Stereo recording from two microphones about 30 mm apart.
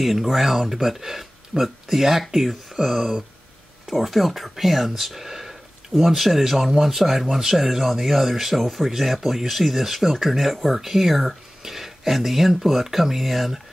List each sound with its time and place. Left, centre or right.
0.0 s speech: centre
7.5 s speech: centre